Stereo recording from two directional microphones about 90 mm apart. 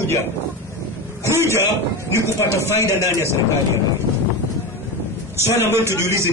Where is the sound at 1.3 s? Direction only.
30° right (ahead or behind).